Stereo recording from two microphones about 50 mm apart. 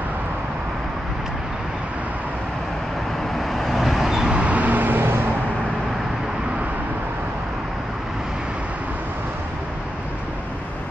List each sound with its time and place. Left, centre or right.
3.4 s vehicle: centre
4.4 s vehicle: right